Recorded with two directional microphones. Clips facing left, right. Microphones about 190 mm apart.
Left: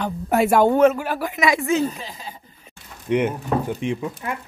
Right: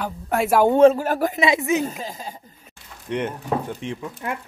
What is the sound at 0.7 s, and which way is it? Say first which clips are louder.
Speech: right 2 dB; 30° right (ahead or behind).